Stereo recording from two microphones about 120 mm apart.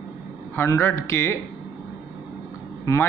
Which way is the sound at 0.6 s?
25° left (ahead or behind).